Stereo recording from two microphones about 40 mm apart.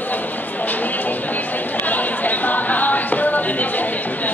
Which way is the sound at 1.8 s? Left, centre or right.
Left.